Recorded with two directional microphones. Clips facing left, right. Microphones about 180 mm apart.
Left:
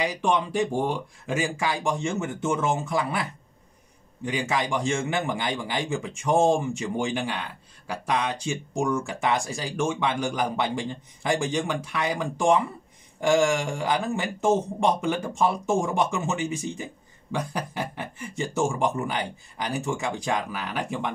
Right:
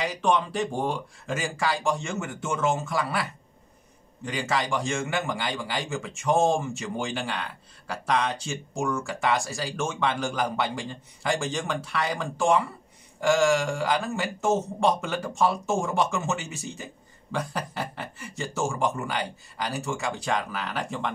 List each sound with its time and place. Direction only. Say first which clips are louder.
1.2 s speech: left 1 dB; 15° left (ahead or behind)
8.5 s speech: left 3 dB; 20° left (ahead or behind)